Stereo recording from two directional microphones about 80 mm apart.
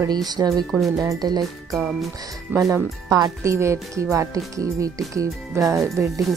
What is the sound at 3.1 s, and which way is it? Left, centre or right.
Speech, right.